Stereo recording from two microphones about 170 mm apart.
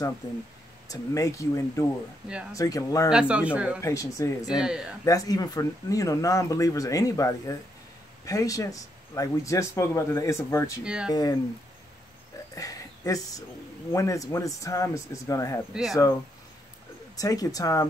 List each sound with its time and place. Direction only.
0.8 s speech: 20° left (ahead or behind)
3.1 s speech: 5° right (ahead or behind)
3.8 s speech: 20° left (ahead or behind)
4.6 s speech: 5° right (ahead or behind)
5.0 s speech: 20° left (ahead or behind)
10.8 s speech: 5° right (ahead or behind)
12.5 s a sound: 20° left (ahead or behind)
13.9 s speech: 20° left (ahead or behind)
15.7 s speech: centre (ahead or behind)
17.2 s speech: 20° left (ahead or behind)